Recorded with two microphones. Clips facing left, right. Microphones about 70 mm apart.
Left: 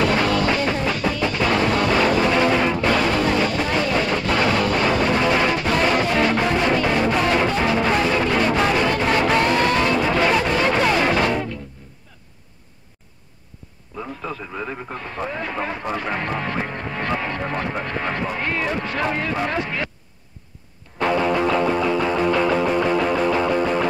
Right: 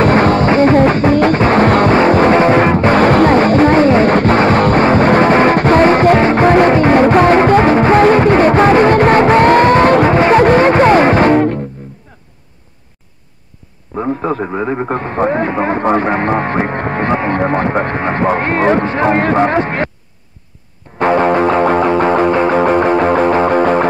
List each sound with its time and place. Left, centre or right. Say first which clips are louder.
0.0 s music: right 9 dB; right
13.9 s radio: right 13 dB; right
14.9 s vehicle: right 13 dB; right
19.1 s a sound: right 11 dB; right
21.0 s music: right 8 dB; right